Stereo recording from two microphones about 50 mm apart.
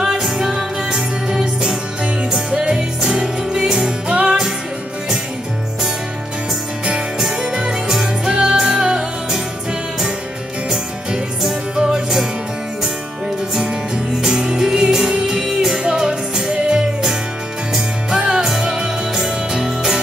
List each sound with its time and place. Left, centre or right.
0.0 s music: centre
7.2 s music: centre
10.7 s music: centre
14.2 s music: centre
15.8 s music: centre